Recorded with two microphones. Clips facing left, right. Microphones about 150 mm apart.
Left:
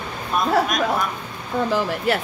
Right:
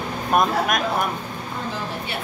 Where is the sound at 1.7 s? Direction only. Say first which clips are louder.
Left 8 dB; 90° left.